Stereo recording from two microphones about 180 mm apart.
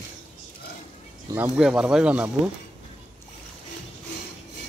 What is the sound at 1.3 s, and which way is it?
Speech, 5° right (ahead or behind).